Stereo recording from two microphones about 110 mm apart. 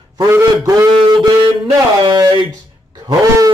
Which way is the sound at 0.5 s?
30° right (ahead or behind).